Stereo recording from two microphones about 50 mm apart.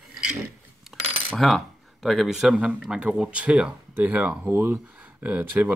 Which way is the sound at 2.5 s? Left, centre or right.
Centre.